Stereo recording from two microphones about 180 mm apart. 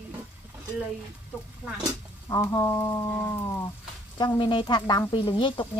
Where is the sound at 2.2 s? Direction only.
20° left (ahead or behind).